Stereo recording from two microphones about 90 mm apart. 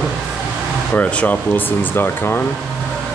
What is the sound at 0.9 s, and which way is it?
Speech, 15° left (ahead or behind).